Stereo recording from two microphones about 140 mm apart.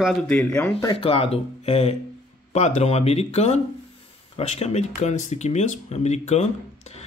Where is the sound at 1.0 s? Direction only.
40° left (ahead or behind).